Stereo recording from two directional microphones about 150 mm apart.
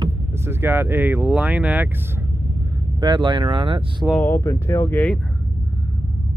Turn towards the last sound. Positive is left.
turn(degrees=10)  # may be behind; listen again after turning